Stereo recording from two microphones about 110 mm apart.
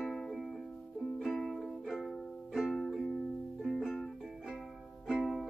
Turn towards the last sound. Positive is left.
turn(degrees=0)  # may be behind; listen again after turning